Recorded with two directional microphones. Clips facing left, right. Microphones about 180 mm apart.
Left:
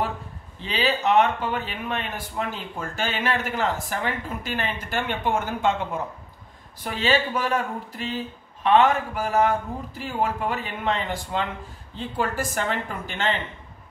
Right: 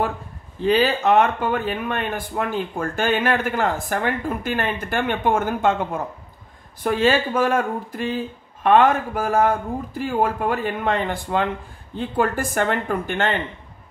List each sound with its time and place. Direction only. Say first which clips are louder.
0.6 s speech: right 7 dB; 50° right (ahead or behind)
6.8 s speech: right 5 dB; 50° right (ahead or behind)